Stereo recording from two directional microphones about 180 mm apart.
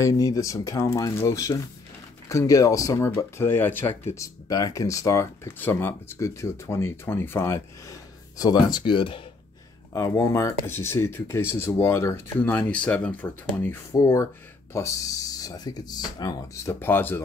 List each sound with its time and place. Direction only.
0.0 s speech: 20° left (ahead or behind)
9.9 s speech: 15° left (ahead or behind)